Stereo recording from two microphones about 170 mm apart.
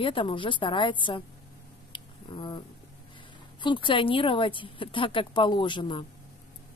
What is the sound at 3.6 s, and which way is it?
A woman's voice, 30° left (ahead or behind).